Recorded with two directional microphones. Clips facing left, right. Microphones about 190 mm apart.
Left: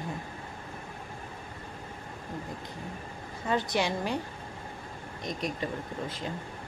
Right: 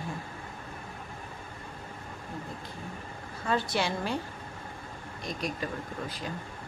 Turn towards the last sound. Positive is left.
turn(degrees=25)  # may be behind; listen again after turning